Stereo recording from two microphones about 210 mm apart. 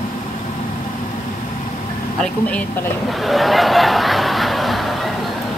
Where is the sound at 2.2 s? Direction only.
5° left (ahead or behind).